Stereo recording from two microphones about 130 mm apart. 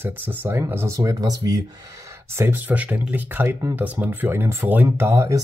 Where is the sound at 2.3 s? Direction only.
15° right (ahead or behind).